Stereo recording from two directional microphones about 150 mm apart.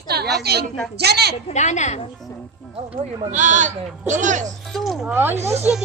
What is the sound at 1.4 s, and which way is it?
Speech, 50° left (ahead or behind).